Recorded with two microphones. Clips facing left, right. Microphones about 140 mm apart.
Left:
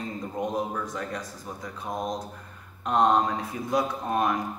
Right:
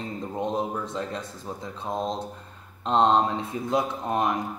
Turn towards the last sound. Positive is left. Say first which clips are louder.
# even
turn(degrees=-20)  # may be behind; listen again after turning